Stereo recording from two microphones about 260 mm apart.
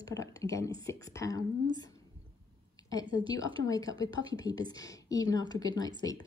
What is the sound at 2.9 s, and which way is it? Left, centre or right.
Speech, centre.